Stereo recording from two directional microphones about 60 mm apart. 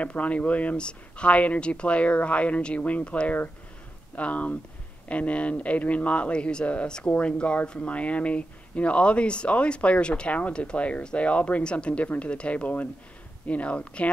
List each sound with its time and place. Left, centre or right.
0.0 s speech: left